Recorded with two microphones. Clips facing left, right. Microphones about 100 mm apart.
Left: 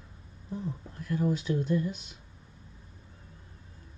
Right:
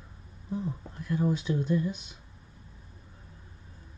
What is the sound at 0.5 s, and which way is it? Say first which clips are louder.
Speech: right 3 dB; 20° right (ahead or behind).